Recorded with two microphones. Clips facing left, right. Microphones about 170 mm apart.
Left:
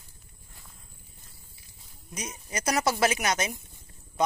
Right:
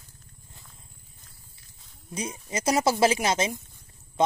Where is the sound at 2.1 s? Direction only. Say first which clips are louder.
Right 4 dB; 25° right (ahead or behind).